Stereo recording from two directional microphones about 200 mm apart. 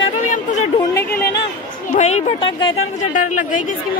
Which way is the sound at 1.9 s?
35° left (ahead or behind).